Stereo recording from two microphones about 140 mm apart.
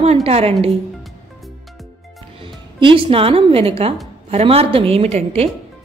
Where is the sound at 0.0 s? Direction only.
50° right (ahead or behind).